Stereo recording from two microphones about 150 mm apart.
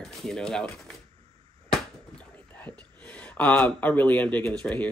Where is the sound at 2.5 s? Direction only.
10° left (ahead or behind).